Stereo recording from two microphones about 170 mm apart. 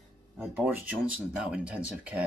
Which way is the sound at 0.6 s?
10° right (ahead or behind).